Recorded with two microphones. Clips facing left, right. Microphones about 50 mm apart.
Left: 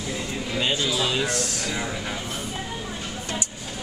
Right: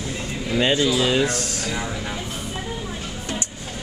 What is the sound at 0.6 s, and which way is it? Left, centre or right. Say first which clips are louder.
Speech: right 6 dB; right.